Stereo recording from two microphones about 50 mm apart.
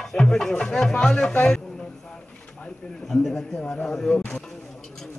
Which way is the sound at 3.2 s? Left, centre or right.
Centre.